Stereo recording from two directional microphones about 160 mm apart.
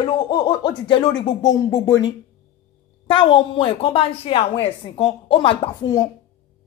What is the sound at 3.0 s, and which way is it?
A woman's voice, 30° left (ahead or behind).